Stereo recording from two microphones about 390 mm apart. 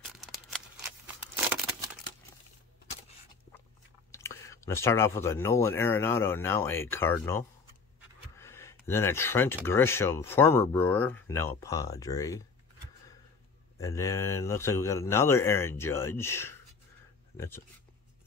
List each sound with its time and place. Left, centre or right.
4.1 s speech: centre
13.7 s speech: centre